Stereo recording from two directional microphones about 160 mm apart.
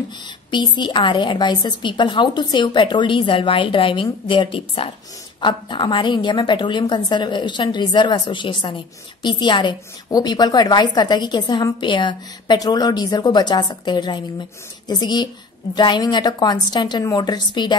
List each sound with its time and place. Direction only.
0.5 s a woman's voice: 30° left (ahead or behind)